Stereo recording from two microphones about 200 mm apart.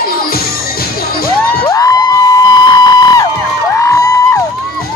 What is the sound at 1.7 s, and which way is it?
Music, 15° left (ahead or behind).